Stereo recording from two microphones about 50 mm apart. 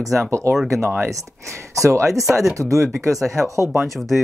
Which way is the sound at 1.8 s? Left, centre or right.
Right.